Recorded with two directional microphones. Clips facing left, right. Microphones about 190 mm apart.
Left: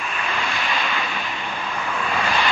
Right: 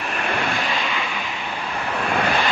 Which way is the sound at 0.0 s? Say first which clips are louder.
Right 3 dB; 55° right (ahead or behind).